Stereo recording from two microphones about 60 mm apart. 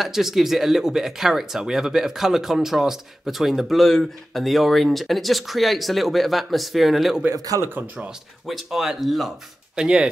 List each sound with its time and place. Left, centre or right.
0.0 s speech: centre
7.3 s speech: right
7.7 s speech: right
8.5 s speech: centre
9.8 s speech: centre